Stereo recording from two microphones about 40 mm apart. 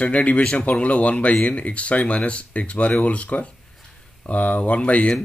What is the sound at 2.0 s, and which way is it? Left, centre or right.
Speech, left.